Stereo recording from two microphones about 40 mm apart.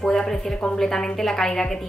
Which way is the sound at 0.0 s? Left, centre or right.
Centre.